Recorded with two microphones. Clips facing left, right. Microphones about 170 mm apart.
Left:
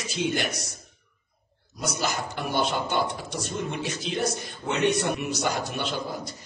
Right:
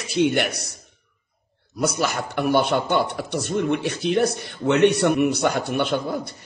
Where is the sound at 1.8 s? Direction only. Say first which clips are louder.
Right 6 dB; 60° right (ahead or behind).